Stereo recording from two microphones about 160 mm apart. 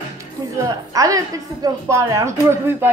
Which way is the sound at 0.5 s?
20° right (ahead or behind).